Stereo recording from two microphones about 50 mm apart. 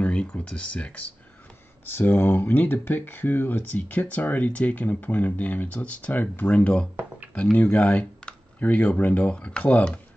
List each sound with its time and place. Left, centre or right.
0.0 s a sound: left
0.5 s speech: left
1.9 s speech: left